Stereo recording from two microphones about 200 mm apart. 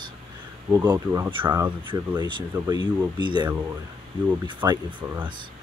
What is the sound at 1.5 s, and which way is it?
Speech, 10° right (ahead or behind).